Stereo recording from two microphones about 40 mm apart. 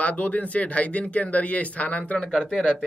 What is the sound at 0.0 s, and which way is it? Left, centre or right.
Speech, left.